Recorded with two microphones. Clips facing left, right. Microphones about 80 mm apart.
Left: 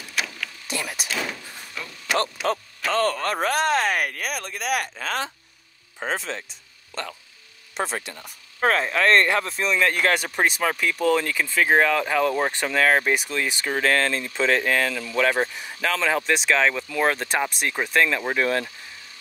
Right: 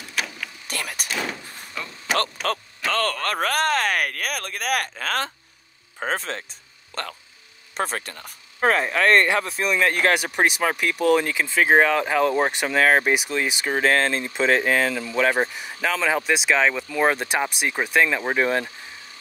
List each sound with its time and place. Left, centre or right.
0.7 s a sound: right
2.9 s speech: right
7.7 s speech: right
8.5 s speech: centre; by 18.7 s right